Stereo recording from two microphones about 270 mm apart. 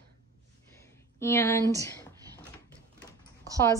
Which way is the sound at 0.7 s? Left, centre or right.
Centre.